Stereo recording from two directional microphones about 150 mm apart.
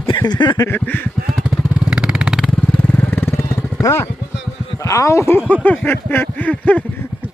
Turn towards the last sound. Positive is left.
turn(degrees=10)  # may be behind; listen again after turning